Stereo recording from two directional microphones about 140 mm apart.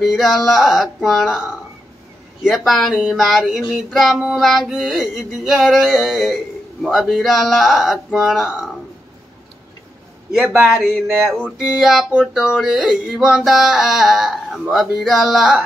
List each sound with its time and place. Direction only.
0.0 s child singing: centre (ahead or behind)
10.4 s speech: 15° right (ahead or behind)
11.2 s child singing: centre (ahead or behind)